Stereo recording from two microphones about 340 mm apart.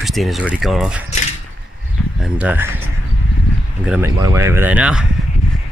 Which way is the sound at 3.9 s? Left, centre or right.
Centre.